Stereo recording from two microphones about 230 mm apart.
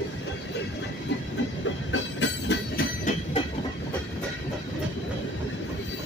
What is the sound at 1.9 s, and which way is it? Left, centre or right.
Train, left.